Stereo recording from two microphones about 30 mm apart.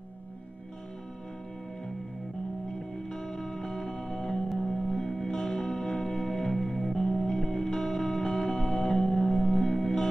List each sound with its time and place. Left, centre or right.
3.1 s music: centre